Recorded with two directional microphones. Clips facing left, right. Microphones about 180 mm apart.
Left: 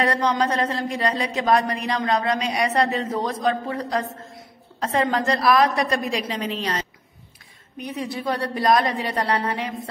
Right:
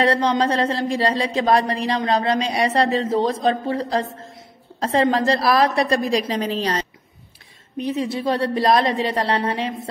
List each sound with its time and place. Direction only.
0.0 s a woman's voice: 30° right (ahead or behind)